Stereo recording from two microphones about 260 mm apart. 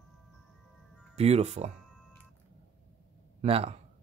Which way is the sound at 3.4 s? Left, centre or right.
Right.